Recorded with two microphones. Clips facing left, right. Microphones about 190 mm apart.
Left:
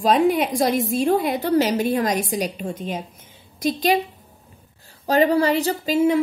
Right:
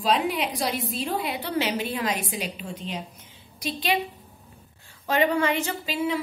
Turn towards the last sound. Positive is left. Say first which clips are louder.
# left 9 dB
turn(degrees=45)  # may be behind; listen again after turning